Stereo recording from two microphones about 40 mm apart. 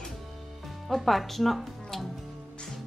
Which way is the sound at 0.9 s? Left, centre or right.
Centre.